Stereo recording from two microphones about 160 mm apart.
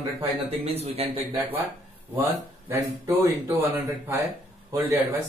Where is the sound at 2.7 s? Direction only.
15° right (ahead or behind).